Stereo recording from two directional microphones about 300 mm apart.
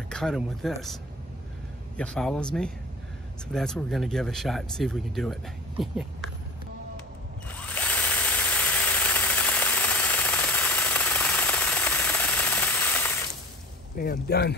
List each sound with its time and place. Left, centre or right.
0.1 s speech: centre
2.0 s speech: centre
7.4 s drill: centre
13.9 s speech: left